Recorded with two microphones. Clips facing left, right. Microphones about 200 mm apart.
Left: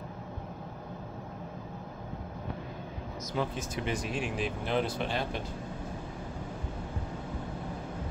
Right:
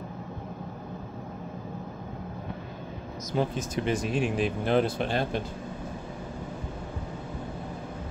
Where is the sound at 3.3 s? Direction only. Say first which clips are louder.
Right 5 dB; 40° right (ahead or behind).